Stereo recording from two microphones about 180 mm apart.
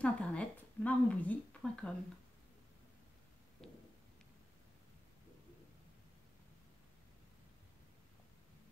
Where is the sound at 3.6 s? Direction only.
5° left (ahead or behind).